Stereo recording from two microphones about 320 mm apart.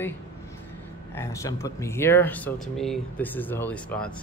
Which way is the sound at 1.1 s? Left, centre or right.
Centre.